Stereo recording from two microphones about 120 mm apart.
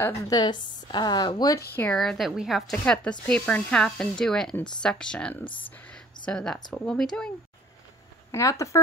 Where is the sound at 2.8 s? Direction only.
10° left (ahead or behind).